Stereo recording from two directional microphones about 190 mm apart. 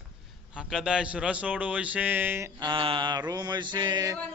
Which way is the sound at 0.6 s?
5° right (ahead or behind).